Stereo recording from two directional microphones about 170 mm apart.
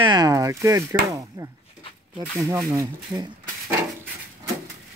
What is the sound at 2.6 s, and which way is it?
Speech, 20° right (ahead or behind).